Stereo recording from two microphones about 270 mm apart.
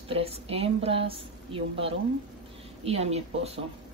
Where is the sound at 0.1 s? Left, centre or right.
Right.